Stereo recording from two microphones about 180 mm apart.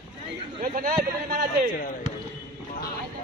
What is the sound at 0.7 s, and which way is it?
Speech, 50° right (ahead or behind).